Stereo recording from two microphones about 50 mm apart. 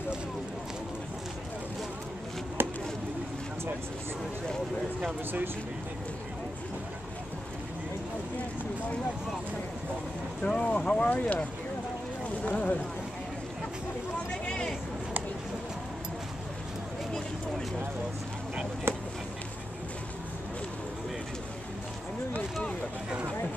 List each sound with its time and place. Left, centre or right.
10.4 s vehicle: left
11.1 s speech: left
12.4 s speech: left
18.9 s a sound: right